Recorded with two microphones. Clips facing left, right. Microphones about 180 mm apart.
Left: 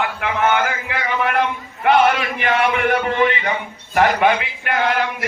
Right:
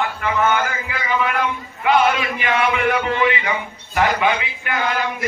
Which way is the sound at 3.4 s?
50° left (ahead or behind).